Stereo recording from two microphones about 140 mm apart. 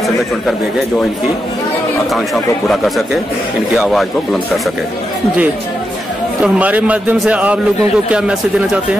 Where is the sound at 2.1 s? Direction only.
Centre (ahead or behind).